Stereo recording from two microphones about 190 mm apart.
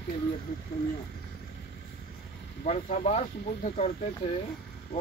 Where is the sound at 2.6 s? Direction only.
35° left (ahead or behind).